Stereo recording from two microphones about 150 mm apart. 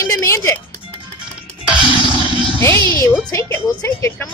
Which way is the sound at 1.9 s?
35° left (ahead or behind).